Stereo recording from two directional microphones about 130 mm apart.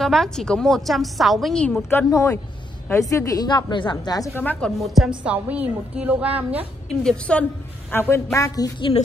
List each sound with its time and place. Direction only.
0.0 s a woman's voice: centre (ahead or behind)
2.0 s a woman's voice: 25° left (ahead or behind)
4.4 s a woman's voice: 10° left (ahead or behind); by 6.7 s 10° right (ahead or behind)
7.0 s a woman's voice: 5° left (ahead or behind)
7.9 s a woman's voice: 20° left (ahead or behind)